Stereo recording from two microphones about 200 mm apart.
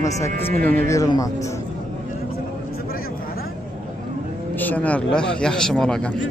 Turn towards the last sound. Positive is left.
turn(degrees=5)  # may be behind; listen again after turning